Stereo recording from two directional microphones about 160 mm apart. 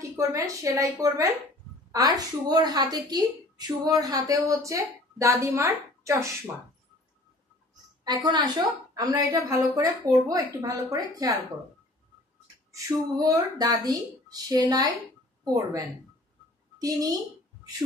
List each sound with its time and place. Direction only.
0.2 s a woman's voice: 20° right (ahead or behind)
8.0 s a woman's voice: 25° right (ahead or behind)
12.7 s a woman's voice: 20° right (ahead or behind)